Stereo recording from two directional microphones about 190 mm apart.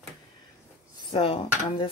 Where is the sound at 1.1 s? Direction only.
30° left (ahead or behind).